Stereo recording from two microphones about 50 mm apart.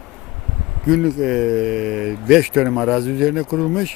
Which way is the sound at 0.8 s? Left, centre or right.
Centre.